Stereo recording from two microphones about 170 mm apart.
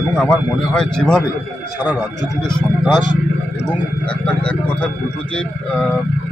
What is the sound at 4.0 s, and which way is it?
A man's voice, 5° left (ahead or behind).